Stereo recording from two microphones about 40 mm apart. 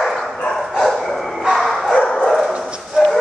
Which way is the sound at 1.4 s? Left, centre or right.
Centre.